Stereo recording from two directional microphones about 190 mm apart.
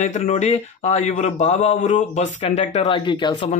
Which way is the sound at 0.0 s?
40° left (ahead or behind).